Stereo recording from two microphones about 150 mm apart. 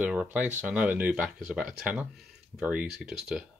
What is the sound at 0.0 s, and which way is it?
Speech, 10° right (ahead or behind).